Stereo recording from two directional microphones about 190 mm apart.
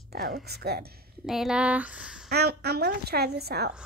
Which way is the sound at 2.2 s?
55° right (ahead or behind).